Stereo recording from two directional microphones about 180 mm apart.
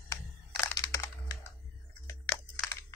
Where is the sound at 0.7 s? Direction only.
20° left (ahead or behind).